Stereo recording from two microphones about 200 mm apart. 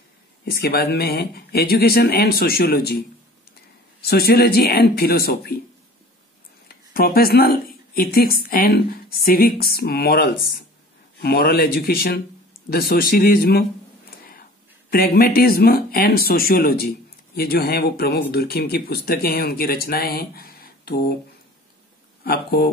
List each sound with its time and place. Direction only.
0.5 s speech: 50° left (ahead or behind)
4.0 s speech: 50° left (ahead or behind)
6.7 s speech: 50° left (ahead or behind)
14.9 s speech: 45° left (ahead or behind)
22.2 s speech: 50° left (ahead or behind)